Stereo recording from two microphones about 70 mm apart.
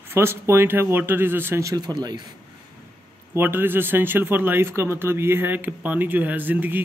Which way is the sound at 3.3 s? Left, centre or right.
Right.